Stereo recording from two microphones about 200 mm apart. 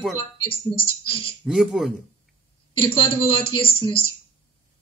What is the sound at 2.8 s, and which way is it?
A woman's voice, 25° left (ahead or behind).